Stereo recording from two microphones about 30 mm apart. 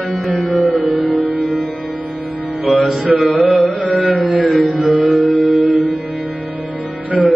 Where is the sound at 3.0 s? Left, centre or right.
Right.